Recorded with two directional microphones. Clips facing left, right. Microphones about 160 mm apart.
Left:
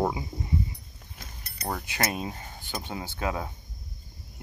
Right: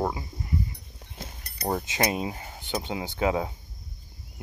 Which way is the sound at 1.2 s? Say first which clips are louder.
Right 4 dB; 30° right (ahead or behind).